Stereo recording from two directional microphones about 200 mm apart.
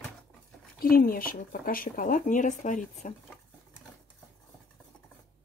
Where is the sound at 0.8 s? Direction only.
45° left (ahead or behind).